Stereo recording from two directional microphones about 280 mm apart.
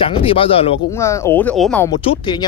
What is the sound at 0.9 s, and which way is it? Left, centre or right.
Speech, centre.